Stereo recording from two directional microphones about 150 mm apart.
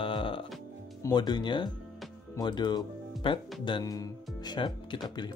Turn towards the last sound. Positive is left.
turn(degrees=30)  # may be behind; listen again after turning